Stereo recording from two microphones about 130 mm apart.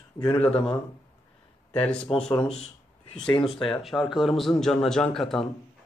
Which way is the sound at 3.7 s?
Centre (ahead or behind).